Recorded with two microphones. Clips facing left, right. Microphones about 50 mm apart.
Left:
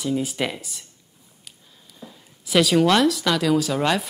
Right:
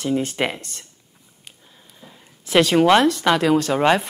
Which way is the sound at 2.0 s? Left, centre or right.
Right.